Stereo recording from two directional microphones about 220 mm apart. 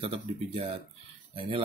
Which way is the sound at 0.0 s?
25° right (ahead or behind).